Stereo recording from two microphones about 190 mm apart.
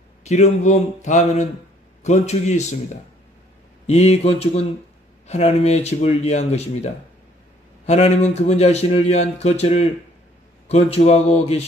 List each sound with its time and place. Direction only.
0.2 s speech: 35° left (ahead or behind)
3.8 s speech: 35° left (ahead or behind)